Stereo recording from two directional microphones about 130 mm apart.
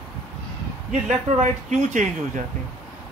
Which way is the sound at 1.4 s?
65° right (ahead or behind).